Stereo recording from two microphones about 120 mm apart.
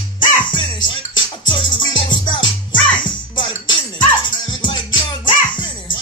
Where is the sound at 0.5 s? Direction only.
40° left (ahead or behind).